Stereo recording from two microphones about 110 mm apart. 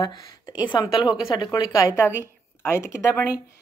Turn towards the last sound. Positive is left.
turn(degrees=25)  # may be behind; listen again after turning